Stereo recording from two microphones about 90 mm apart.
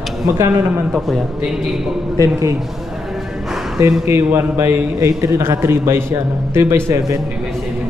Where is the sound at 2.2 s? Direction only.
35° right (ahead or behind).